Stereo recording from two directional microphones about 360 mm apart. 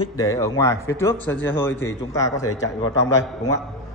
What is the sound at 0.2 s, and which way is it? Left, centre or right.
A man's voice, centre.